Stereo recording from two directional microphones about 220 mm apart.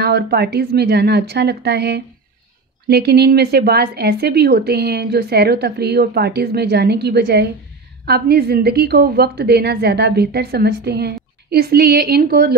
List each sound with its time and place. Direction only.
0.0 s a woman's voice: 45° right (ahead or behind)